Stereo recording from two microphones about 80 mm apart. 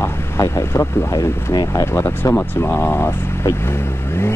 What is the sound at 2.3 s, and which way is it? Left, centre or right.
Speech, left.